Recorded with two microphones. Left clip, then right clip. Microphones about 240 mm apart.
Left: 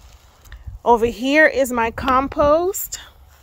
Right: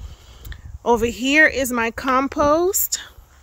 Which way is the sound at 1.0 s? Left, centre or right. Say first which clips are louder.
Left 1 dB; centre.